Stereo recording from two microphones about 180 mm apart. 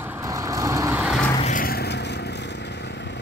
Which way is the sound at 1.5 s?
55° left (ahead or behind).